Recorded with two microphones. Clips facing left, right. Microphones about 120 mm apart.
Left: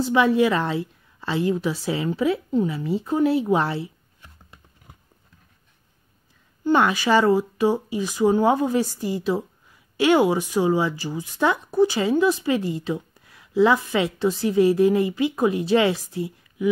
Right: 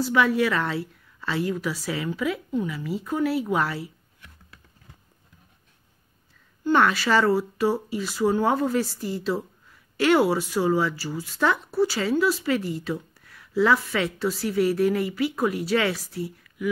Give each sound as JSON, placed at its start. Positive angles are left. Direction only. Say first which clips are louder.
{"t": 0.0, "sound": "a woman's voice", "louder": "left 3 dB", "side_deg": 20}
{"t": 6.6, "sound": "speech", "louder": "left 1 dB", "side_deg": 15}